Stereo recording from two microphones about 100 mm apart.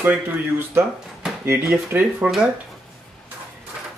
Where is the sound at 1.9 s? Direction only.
20° right (ahead or behind).